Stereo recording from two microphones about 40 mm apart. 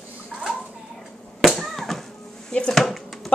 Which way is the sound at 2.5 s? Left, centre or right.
Left.